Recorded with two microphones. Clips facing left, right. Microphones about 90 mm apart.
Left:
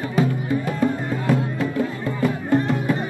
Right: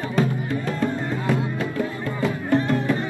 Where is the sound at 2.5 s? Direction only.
15° left (ahead or behind).